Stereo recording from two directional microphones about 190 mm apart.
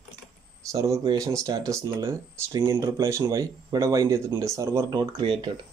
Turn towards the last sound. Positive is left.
turn(degrees=-25)  # may be behind; listen again after turning